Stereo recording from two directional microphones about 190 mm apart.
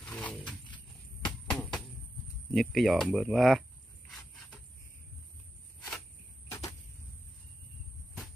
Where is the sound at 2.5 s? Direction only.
Centre (ahead or behind).